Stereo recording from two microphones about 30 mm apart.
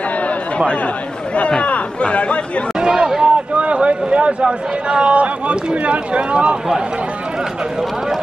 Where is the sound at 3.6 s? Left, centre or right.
Right.